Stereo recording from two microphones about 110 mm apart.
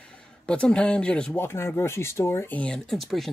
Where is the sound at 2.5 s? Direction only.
5° left (ahead or behind).